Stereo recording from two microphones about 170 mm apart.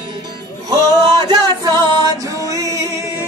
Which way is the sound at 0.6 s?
20° right (ahead or behind).